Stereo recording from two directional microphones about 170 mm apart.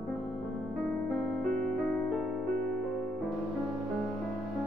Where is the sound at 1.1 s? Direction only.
5° left (ahead or behind).